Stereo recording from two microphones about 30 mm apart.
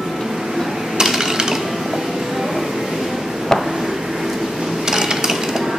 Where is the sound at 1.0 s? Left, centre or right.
Centre.